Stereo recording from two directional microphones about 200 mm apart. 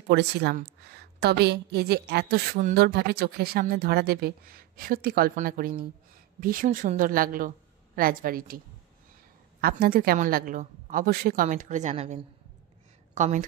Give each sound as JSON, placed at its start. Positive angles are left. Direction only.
{"t": 0.1, "sound": "a woman's voice", "side_deg": -55}
{"t": 9.6, "sound": "a woman's voice", "side_deg": -50}